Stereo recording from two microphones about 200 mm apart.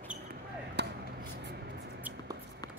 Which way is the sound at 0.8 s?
55° right (ahead or behind).